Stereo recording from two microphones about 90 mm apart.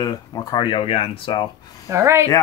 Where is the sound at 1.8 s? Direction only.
30° right (ahead or behind).